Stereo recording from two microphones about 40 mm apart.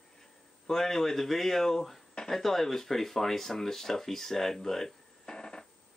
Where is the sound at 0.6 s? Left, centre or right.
Centre.